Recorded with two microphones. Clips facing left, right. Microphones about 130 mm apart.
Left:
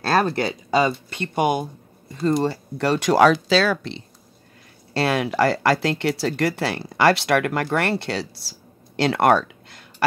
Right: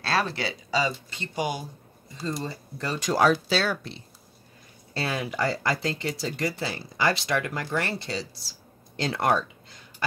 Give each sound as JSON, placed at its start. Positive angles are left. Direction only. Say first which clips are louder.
{"t": 0.0, "sound": "speech", "louder": "left 7 dB", "side_deg": 50}
{"t": 4.9, "sound": "speech", "louder": "left 8 dB", "side_deg": 75}